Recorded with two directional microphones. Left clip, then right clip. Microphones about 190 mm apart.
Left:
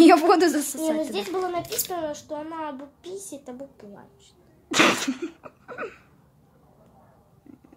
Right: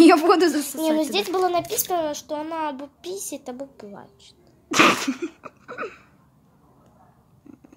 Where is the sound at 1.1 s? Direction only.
45° right (ahead or behind).